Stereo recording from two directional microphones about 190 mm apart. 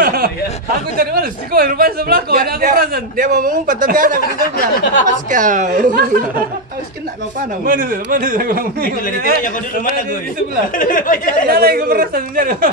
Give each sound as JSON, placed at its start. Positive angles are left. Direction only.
{"t": 0.0, "sound": "a sound", "side_deg": -50}
{"t": 0.9, "sound": "speech", "side_deg": -50}
{"t": 7.6, "sound": "speech", "side_deg": -45}
{"t": 10.7, "sound": "speech", "side_deg": 45}
{"t": 11.4, "sound": "speech", "side_deg": -50}